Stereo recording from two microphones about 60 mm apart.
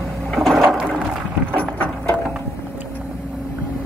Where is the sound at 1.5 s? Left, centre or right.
Centre.